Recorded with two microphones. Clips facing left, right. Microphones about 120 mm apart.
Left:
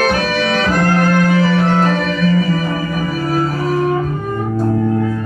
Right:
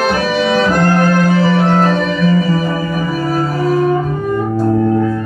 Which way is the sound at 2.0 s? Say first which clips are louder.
Right 2 dB; 25° right (ahead or behind).